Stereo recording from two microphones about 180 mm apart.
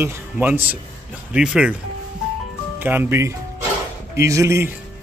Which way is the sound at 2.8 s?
10° right (ahead or behind).